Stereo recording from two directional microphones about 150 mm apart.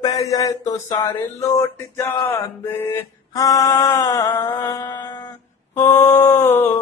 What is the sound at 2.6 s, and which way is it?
Mantra, 15° left (ahead or behind).